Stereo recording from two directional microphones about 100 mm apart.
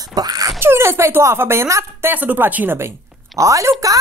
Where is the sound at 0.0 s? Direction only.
40° right (ahead or behind).